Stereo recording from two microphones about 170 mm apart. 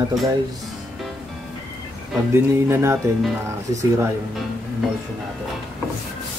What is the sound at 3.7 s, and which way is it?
Speech, 20° right (ahead or behind).